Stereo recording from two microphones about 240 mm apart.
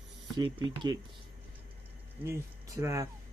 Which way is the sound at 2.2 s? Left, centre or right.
Centre.